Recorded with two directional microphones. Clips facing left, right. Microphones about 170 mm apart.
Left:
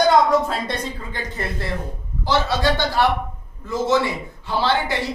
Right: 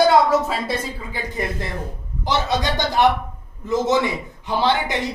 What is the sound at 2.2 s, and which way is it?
A man's voice, 20° right (ahead or behind).